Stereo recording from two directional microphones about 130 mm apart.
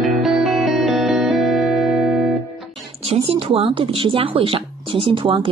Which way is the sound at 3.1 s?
45° right (ahead or behind).